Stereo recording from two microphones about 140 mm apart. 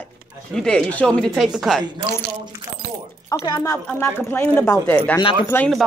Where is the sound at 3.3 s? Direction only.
25° left (ahead or behind).